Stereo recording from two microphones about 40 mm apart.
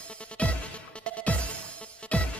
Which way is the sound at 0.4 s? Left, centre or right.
Left.